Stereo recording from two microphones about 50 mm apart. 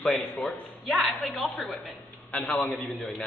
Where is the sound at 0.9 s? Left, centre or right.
Centre.